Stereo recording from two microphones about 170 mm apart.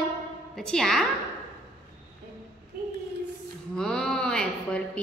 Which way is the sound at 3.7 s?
5° left (ahead or behind).